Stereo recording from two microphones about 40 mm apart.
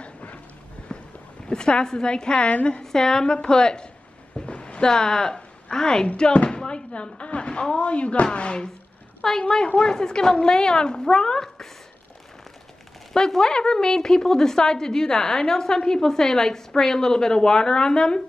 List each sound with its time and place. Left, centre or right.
0.0 s clip-clop: left
0.8 s a sound: left
1.5 s a woman's voice: left
4.5 s a sound: left
6.1 s a woman's voice: left
9.2 s a woman's voice: centre
13.1 s a woman's voice: centre